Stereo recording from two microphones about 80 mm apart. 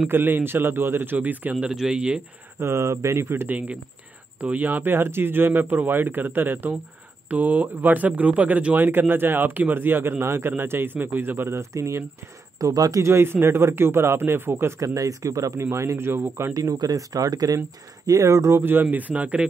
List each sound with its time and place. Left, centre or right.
0.1 s speech: right; by 2.2 s centre
2.6 s a man's voice: right
12.5 s speech: right
13.0 s a man's voice: right
14.8 s a man's voice: right
16.7 s speech: right
18.6 s speech: right